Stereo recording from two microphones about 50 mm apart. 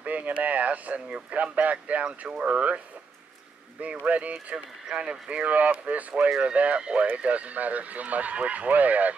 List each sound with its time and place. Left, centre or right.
0.0 s speech: right
3.8 s speech: right
4.8 s speech: centre